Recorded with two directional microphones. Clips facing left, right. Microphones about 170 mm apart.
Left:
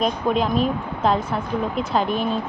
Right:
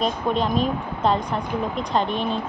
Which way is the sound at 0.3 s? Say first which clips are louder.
Left 2 dB; 5° left (ahead or behind).